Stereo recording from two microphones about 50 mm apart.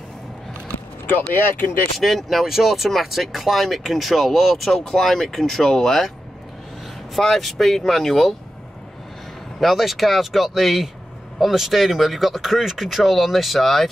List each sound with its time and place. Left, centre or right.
1.3 s speech: left
2.0 s speech: centre
7.2 s speech: centre
9.6 s speech: centre